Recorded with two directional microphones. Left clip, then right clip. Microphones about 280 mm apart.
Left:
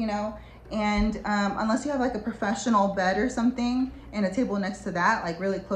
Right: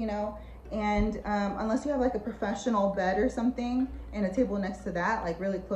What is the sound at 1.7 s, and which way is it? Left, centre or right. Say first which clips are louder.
Speech: left 2 dB; right.